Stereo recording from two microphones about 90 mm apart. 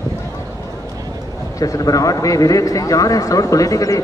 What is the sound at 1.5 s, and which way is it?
Speech, 40° left (ahead or behind).